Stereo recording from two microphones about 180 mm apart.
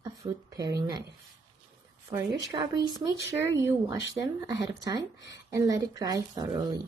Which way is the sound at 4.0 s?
90° left.